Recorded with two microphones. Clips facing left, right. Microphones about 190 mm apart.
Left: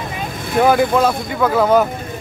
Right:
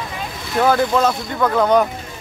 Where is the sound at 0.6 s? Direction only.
15° left (ahead or behind).